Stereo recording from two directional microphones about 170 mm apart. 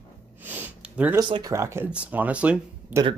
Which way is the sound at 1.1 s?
25° right (ahead or behind).